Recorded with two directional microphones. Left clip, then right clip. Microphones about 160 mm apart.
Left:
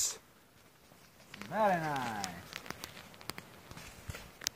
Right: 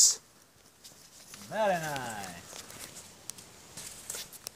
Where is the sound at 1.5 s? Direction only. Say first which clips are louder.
Right 1 dB; 55° right (ahead or behind).